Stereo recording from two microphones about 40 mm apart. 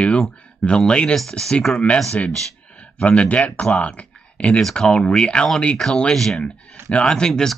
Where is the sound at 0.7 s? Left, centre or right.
Left.